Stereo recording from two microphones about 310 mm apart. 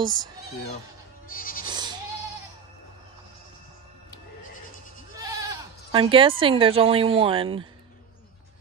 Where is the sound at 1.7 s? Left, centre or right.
Centre.